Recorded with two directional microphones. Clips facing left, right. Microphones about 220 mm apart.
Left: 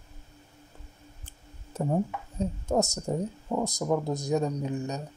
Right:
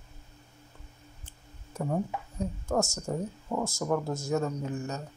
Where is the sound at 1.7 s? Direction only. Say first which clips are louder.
Left 3 dB; 25° left (ahead or behind).